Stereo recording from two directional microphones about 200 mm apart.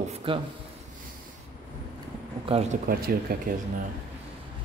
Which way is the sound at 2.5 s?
30° right (ahead or behind).